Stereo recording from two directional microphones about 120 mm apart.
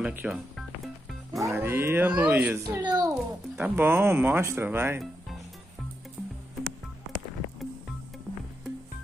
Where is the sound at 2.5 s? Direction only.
25° right (ahead or behind).